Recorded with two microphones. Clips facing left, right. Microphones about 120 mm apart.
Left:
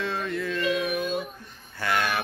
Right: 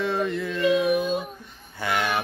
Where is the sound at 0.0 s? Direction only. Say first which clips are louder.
Right 4 dB; 15° right (ahead or behind).